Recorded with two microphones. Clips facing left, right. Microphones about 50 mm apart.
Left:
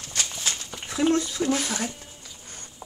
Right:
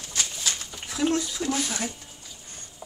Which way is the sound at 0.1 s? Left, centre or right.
Left.